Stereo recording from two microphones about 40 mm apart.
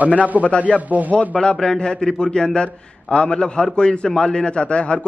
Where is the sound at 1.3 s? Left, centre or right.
Centre.